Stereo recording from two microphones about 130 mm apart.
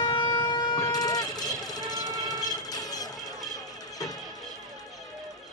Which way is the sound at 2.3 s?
30° left (ahead or behind).